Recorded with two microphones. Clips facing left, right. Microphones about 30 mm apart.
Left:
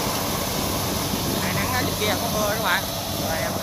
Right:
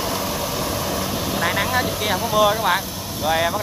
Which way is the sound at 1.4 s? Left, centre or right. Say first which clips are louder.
Right 8 dB; right.